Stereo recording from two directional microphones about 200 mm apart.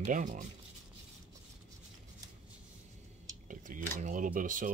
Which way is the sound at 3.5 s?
40° right (ahead or behind).